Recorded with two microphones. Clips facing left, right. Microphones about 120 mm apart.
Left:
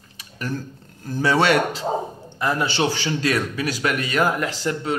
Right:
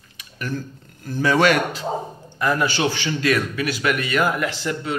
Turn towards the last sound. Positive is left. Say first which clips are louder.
# even
turn(degrees=35)  # may be behind; listen again after turning